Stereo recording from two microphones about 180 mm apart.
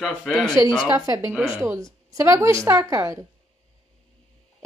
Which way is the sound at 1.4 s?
15° right (ahead or behind).